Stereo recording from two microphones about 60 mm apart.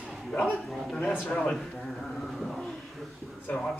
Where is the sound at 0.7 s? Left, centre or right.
Centre.